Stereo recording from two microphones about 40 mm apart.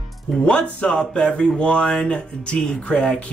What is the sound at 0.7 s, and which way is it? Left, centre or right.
A man's voice, left.